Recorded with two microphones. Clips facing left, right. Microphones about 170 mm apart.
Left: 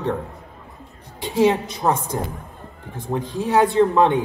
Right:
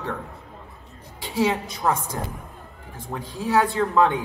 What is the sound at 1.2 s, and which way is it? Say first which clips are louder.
A woman's voice: left 5 dB; 20° left (ahead or behind).